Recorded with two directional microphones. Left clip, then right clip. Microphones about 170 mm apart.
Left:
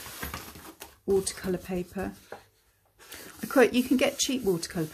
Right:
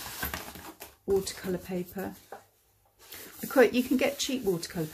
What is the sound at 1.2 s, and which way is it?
Speech, 30° left (ahead or behind).